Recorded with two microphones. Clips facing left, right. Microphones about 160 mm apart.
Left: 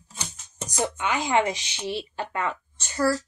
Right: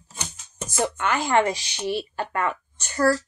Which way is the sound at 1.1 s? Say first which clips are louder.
Right 2 dB; 15° left (ahead or behind).